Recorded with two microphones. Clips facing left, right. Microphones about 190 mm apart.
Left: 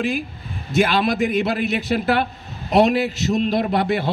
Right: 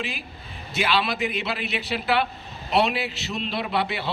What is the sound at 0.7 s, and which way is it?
A man's voice, 50° left (ahead or behind).